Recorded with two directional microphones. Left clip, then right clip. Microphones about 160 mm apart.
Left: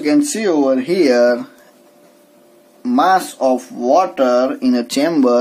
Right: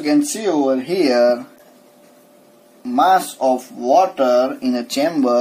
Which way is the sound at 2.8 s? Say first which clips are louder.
Left 1 dB; 55° left (ahead or behind).